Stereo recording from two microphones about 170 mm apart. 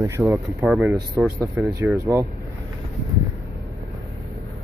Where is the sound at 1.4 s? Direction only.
20° right (ahead or behind).